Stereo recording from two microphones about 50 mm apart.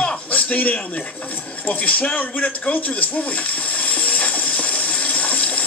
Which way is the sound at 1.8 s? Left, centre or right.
Left.